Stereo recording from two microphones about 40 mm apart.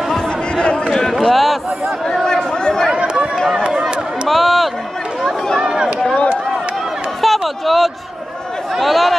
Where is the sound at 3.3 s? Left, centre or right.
Centre.